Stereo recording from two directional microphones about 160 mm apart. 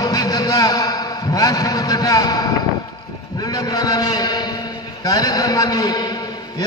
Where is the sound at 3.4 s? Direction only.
20° left (ahead or behind).